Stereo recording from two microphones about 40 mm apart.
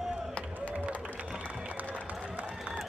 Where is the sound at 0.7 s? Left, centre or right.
Right.